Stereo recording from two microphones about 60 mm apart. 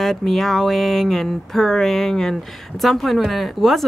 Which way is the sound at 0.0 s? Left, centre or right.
Centre.